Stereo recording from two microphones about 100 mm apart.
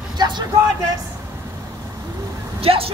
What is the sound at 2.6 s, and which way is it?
Speech, 70° right (ahead or behind).